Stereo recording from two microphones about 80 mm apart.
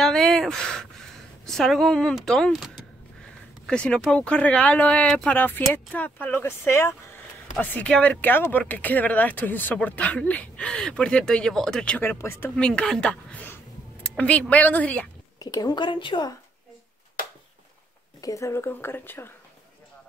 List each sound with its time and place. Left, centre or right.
0.0 s a sound: centre
2.2 s speech: centre
3.6 s speech: centre; by 7.2 s left
7.6 s speech: left
12.0 s speech: left
12.5 s speech: centre
14.0 s a sound: centre
14.5 s speech: centre
15.3 s speech: left
18.2 s speech: left